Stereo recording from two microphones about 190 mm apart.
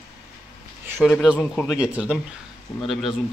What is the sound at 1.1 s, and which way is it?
Speech, centre (ahead or behind).